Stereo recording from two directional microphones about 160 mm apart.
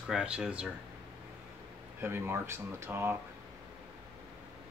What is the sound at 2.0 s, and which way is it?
Speech, 15° right (ahead or behind).